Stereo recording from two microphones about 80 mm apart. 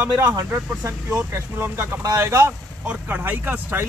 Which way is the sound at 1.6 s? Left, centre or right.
Right.